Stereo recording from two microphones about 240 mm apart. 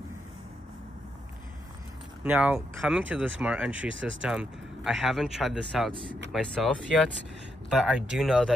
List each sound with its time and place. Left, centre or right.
2.2 s speech: centre
3.9 s speech: right
4.2 s speech: centre